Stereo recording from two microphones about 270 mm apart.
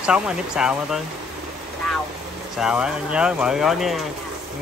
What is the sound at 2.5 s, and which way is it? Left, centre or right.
Speech, centre.